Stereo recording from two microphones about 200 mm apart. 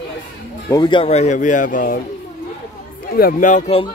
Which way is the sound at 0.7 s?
25° left (ahead or behind).